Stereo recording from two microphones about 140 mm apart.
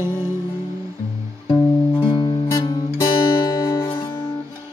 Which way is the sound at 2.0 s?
35° left (ahead or behind).